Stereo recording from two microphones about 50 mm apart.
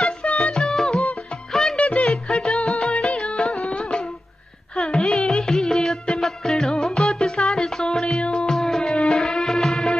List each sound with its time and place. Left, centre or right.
0.4 s music: centre
1.5 s music of bollywood: centre
1.8 s music: left
2.0 s music: centre
8.5 s music: centre